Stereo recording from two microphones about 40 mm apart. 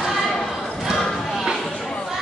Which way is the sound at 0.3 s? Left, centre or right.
Centre.